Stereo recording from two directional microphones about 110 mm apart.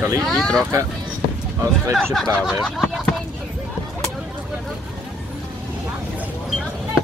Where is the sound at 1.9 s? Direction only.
5° left (ahead or behind).